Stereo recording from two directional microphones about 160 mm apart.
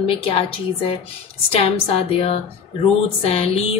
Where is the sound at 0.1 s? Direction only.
35° left (ahead or behind).